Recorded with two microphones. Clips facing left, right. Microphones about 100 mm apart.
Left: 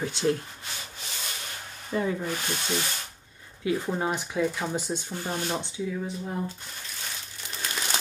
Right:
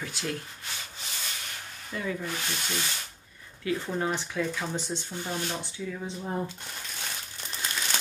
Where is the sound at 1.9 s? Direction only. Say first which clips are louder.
Left 7 dB; 25° left (ahead or behind).